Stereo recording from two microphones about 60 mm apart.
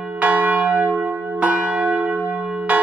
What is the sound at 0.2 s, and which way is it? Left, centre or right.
Church bell, right.